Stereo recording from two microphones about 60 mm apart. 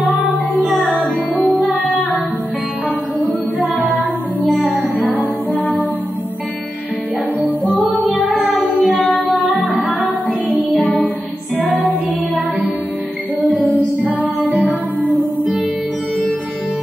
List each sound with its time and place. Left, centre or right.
1.4 s music: centre
5.1 s music: left
8.8 s music: centre
11.6 s music: right
13.5 s music: left
14.7 s music: right